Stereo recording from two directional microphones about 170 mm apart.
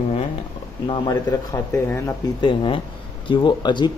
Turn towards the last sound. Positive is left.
turn(degrees=25)  # may be behind; listen again after turning